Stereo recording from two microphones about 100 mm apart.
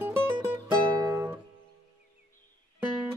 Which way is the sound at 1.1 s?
20° right (ahead or behind).